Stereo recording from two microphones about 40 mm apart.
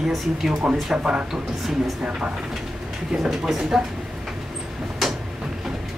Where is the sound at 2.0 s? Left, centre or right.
Right.